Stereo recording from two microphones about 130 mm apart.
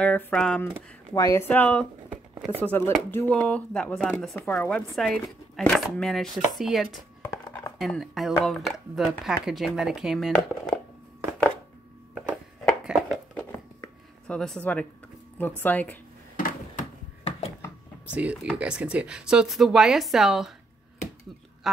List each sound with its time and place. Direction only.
0.0 s speech: 10° left (ahead or behind)
1.1 s speech: 25° left (ahead or behind)
1.5 s speech: 10° left (ahead or behind)
2.0 s shuffling cards: 10° right (ahead or behind)
2.6 s speech: 15° left (ahead or behind)
12.6 s a sound: 5° right (ahead or behind)
14.2 s speech: 5° left (ahead or behind)
16.3 s a sound: 90° left
18.1 s speech: 10° right (ahead or behind)